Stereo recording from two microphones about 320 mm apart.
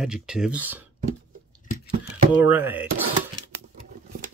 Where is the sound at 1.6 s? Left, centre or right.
Left.